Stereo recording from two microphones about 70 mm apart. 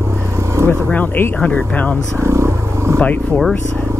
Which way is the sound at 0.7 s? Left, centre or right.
Left.